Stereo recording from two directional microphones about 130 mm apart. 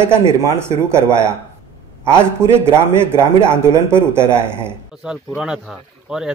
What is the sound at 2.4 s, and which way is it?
Speech, 20° right (ahead or behind).